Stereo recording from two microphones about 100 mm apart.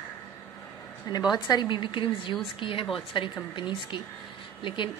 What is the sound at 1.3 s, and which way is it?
A woman's voice, 45° left (ahead or behind).